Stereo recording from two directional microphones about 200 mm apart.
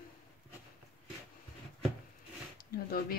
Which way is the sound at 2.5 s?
45° left (ahead or behind).